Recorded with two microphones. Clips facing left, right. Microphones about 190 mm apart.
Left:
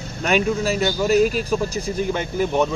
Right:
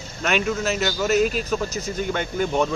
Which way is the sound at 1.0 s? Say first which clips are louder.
Left 3 dB; 40° left (ahead or behind).